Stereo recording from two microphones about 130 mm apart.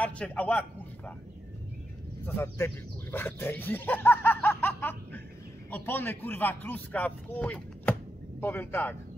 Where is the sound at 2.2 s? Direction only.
20° left (ahead or behind).